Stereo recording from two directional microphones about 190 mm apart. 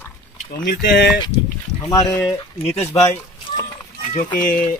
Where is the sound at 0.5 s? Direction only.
55° left (ahead or behind).